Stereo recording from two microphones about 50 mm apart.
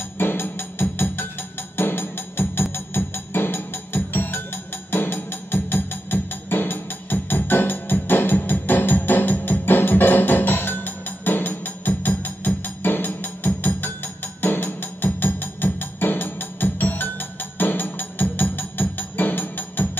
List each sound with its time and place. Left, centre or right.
0.2 s music: left